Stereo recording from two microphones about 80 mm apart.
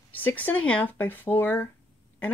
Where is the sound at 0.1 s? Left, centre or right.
Left.